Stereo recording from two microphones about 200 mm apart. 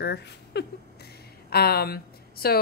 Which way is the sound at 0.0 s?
55° left (ahead or behind).